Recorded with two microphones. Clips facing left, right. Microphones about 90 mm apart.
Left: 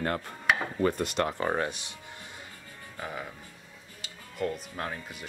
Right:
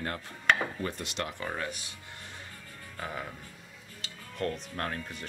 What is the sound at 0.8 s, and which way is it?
Speech, 50° left (ahead or behind).